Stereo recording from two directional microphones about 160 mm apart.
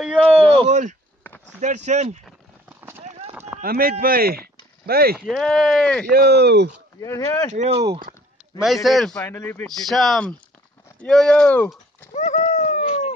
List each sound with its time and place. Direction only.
0.0 s speech: centre (ahead or behind)
0.4 s a sound: 35° right (ahead or behind)
1.6 s speech: 50° right (ahead or behind)
3.6 s speech: 70° right (ahead or behind)
5.2 s speech: centre (ahead or behind)
6.1 s speech: 85° right
7.0 s speech: 20° left (ahead or behind)
7.5 s speech: 45° right (ahead or behind)
8.8 s speech: centre (ahead or behind)
9.7 s speech: centre (ahead or behind)
12.1 s dog: 45° left (ahead or behind)